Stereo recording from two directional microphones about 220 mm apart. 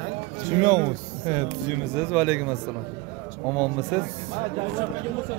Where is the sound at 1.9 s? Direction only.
5° right (ahead or behind).